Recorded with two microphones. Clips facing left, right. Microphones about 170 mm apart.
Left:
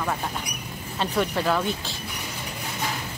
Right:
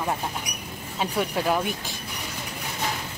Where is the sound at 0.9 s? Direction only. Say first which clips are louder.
Left 1 dB; 10° right (ahead or behind).